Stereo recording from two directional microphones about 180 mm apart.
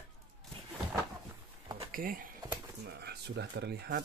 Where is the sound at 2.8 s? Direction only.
65° right (ahead or behind).